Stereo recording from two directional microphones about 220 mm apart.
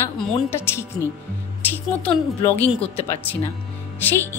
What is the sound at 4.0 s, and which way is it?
Speech, 10° left (ahead or behind).